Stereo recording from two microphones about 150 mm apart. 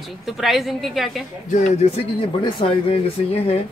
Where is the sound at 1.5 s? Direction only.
55° left (ahead or behind).